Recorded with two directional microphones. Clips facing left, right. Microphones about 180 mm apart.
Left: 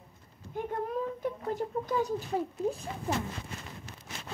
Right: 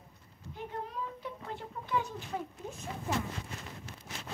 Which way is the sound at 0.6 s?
50° left (ahead or behind).